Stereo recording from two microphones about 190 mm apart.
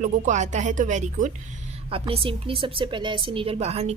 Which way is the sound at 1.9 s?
30° right (ahead or behind).